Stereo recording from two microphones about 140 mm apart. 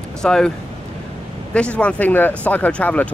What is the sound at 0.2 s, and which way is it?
Speech, 5° left (ahead or behind).